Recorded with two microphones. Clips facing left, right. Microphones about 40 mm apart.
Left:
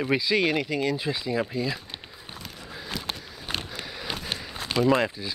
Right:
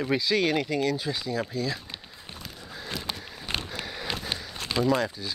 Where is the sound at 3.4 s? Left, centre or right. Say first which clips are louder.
Even; centre.